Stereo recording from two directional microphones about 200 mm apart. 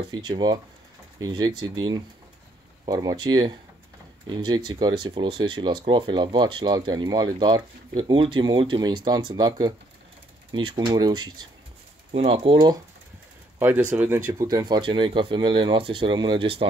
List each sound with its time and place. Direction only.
0.1 s speech: 20° right (ahead or behind)
4.6 s speech: 20° right (ahead or behind)
13.6 s speech: 10° right (ahead or behind); by 16.6 s 25° right (ahead or behind)